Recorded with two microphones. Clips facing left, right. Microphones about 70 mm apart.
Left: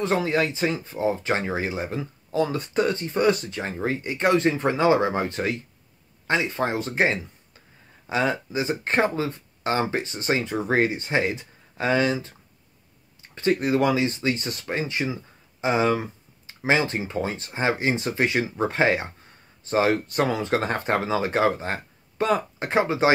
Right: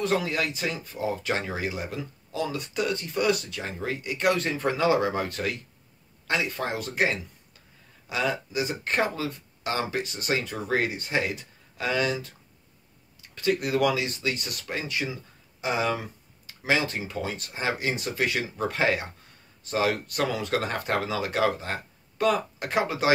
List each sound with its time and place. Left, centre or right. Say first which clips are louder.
0.0 s speech: left 3 dB; left